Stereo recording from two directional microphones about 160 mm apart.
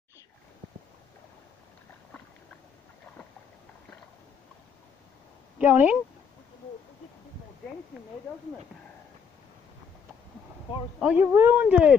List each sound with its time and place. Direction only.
5.6 s speech: 10° right (ahead or behind)
11.0 s speech: 5° right (ahead or behind)